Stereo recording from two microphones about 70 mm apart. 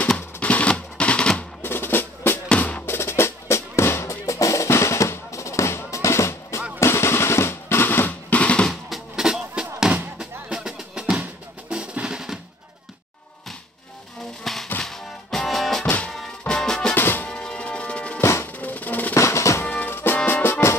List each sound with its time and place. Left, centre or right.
0.4 s typewriter: centre
1.6 s music: left
2.4 s drum: centre
2.9 s drum: left
8.4 s drum: centre
8.6 s music: centre
11.7 s drum: centre
14.4 s music: centre
16.9 s music: left
17.3 s music: centre
18.2 s music: left
18.5 s percussion: left
19.1 s drum: left
19.6 s music: left